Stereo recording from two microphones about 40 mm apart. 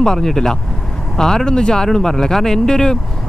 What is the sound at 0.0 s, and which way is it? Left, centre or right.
Speech, centre.